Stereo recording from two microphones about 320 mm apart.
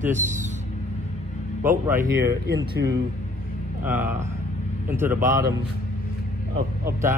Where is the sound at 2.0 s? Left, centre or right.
Right.